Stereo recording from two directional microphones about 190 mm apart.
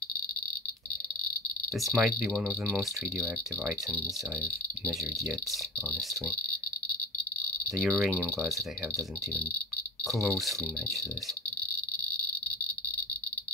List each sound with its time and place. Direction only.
1.8 s speech: centre (ahead or behind)
5.5 s speech: centre (ahead or behind)
7.6 s speech: centre (ahead or behind)
10.0 s speech: centre (ahead or behind)